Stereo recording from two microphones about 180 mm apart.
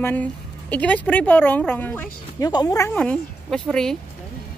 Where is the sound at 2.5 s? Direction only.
20° left (ahead or behind).